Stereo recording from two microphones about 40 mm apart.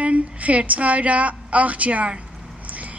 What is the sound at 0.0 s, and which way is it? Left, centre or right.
A woman's voice, right.